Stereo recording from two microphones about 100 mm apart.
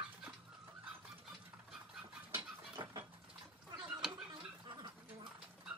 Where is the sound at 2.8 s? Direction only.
55° right (ahead or behind).